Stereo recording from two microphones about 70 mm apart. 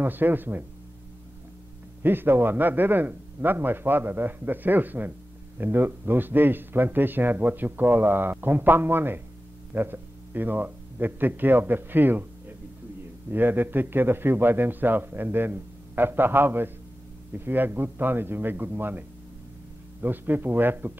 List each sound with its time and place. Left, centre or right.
0.0 s speech: right
2.0 s a man's voice: right